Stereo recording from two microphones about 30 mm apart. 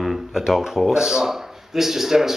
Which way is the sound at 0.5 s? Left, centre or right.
Centre.